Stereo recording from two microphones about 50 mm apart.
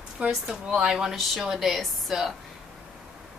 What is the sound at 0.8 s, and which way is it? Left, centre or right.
Speech, centre.